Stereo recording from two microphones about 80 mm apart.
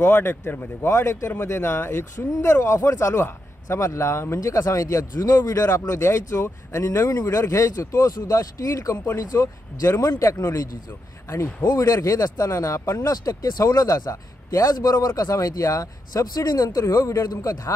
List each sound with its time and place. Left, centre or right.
0.0 s speech: left
4.4 s speech: left
5.7 s speech: left
8.9 s speech: left
9.2 s speech: left
11.6 s speech: left